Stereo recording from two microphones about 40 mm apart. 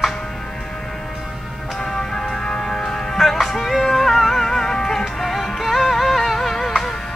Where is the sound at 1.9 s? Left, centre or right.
Centre.